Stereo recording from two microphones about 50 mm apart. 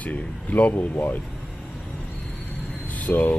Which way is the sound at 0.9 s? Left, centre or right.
Left.